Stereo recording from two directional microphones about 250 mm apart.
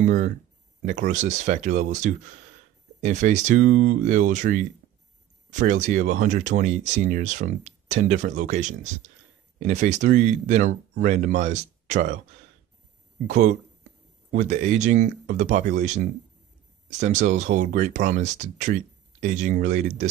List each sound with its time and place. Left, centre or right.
0.0 s speech: right
13.3 s speech: right